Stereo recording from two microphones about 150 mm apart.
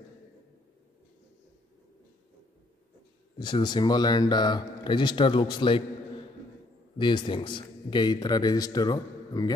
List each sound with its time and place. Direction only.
3.3 s speech: 30° left (ahead or behind)
7.0 s a man's voice: 35° left (ahead or behind)